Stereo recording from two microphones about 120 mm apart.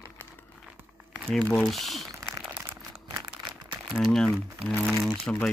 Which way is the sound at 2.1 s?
30° right (ahead or behind).